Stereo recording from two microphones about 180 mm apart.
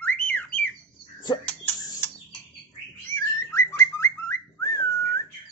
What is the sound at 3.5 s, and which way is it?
Whistling, 15° left (ahead or behind).